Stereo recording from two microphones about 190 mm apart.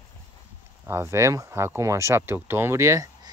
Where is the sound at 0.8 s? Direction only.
15° right (ahead or behind).